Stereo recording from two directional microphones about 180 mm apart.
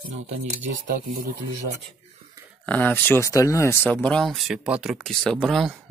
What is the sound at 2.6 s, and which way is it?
Speech, 10° left (ahead or behind).